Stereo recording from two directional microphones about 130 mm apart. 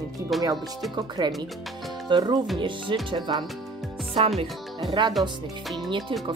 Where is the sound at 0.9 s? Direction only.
35° right (ahead or behind).